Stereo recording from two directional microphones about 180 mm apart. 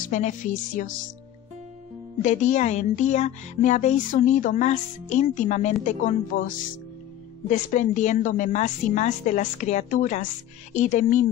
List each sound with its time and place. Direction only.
0.0 s speech: 45° left (ahead or behind)
2.2 s speech: 40° left (ahead or behind)